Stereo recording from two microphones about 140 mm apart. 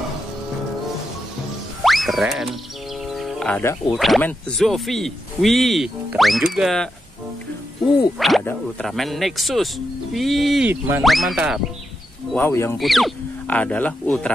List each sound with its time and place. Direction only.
1.8 s music: centre (ahead or behind)
3.1 s a sound: centre (ahead or behind)
3.9 s speech: centre (ahead or behind)
8.2 s speech: centre (ahead or behind)
10.7 s speech: 15° right (ahead or behind)
11.1 s speech: centre (ahead or behind)
12.4 s speech: 20° left (ahead or behind)
12.7 s speech: centre (ahead or behind)
13.5 s speech: 10° left (ahead or behind)